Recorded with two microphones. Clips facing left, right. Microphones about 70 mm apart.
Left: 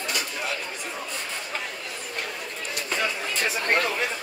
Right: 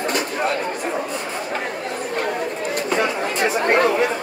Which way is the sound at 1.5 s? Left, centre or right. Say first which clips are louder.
Right 8 dB; right.